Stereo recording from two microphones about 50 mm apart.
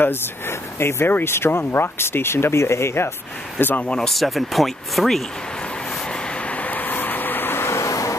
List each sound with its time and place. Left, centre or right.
0.0 s speech: left
3.5 s speech: left
3.8 s speech: left
4.1 s speech: centre
6.4 s vehicle: left
7.6 s vehicle: left